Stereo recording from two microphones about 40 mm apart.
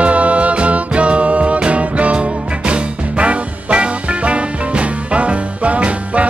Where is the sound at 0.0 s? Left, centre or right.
Right.